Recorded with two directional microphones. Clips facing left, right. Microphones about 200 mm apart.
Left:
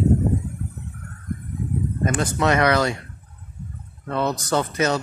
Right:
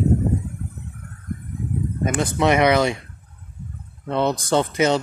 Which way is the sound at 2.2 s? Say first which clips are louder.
Right 3 dB; 15° right (ahead or behind).